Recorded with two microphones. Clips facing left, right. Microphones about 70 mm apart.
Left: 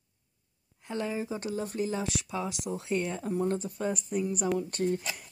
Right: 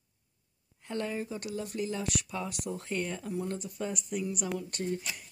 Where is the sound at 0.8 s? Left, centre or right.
Centre.